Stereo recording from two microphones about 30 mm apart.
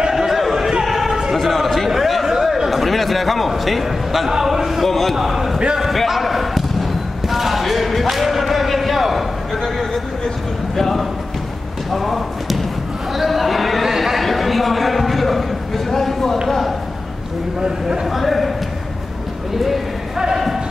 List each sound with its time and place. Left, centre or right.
0.1 s a sound: centre
1.3 s a sound: centre
2.8 s a man's voice: centre
4.3 s a man's voice: centre
4.8 s a man's voice: centre
5.1 s a man's voice: centre
5.8 s basketball bounce: centre
10.8 s a man's voice: centre
11.9 s a sound: centre
17.6 s speech: right
18.1 s a man's voice: centre
19.5 s speech: centre